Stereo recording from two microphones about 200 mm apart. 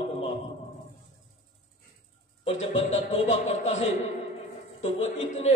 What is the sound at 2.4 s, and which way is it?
A man's voice, 35° left (ahead or behind).